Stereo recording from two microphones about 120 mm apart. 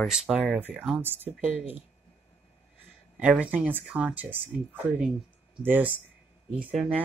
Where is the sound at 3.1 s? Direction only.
10° right (ahead or behind).